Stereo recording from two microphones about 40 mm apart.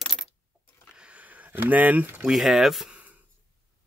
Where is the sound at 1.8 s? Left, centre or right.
Right.